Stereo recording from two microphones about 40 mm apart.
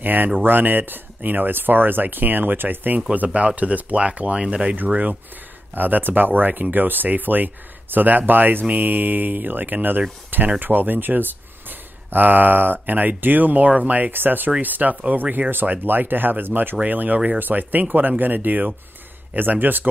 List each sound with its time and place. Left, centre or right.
0.0 s speech: right
3.3 s speech: right
4.7 s speech: right
14.1 s speech: right
16.8 s speech: right